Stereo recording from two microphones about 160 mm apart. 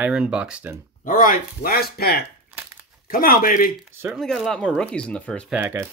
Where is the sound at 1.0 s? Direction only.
60° left (ahead or behind).